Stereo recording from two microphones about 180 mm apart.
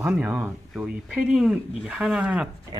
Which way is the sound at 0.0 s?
5° right (ahead or behind).